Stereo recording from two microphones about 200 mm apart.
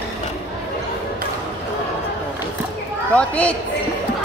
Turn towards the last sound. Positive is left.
turn(degrees=5)  # may be behind; listen again after turning